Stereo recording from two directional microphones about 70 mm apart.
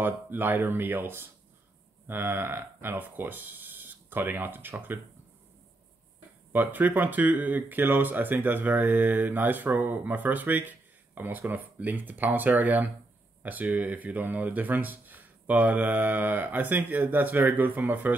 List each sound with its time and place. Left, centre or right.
0.0 s speech: right
6.5 s speech: right